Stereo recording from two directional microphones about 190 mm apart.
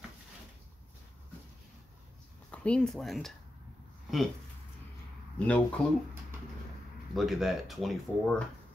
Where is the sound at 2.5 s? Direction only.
5° left (ahead or behind).